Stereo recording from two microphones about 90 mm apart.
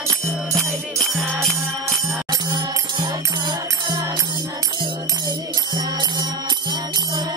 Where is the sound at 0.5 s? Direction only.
5° left (ahead or behind).